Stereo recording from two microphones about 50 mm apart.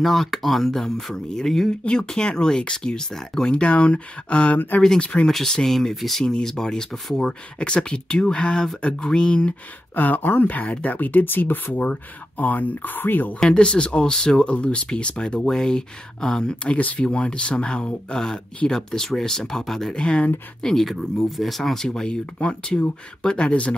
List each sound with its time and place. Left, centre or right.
0.0 s speech: centre
3.5 s speech: left
4.6 s speech: left
4.8 s speech: centre
7.5 s speech: centre
9.9 s speech: left
13.4 s speech: centre
16.7 s speech: left; by 19.9 s centre
19.9 s speech: centre
20.6 s speech: centre
21.8 s speech: centre